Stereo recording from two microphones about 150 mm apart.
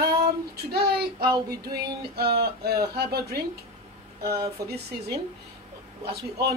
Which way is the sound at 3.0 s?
90° right.